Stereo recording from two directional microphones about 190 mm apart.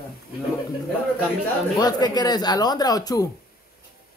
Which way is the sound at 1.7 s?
20° left (ahead or behind).